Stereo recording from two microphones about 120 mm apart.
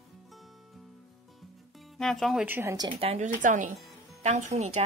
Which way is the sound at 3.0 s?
60° right (ahead or behind).